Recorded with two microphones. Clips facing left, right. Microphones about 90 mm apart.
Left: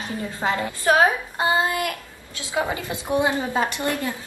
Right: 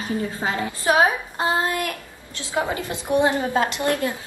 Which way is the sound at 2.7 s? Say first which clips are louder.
Right 2 dB; 20° left (ahead or behind).